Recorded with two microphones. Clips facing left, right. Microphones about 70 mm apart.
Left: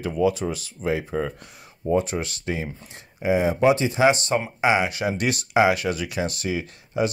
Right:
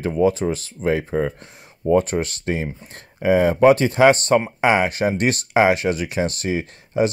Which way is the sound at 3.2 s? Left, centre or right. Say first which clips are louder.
Right 5 dB; right.